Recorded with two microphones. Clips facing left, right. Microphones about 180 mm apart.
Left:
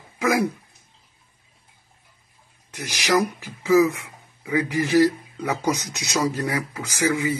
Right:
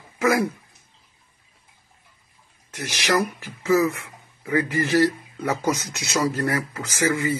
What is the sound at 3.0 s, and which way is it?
Speech, 15° left (ahead or behind).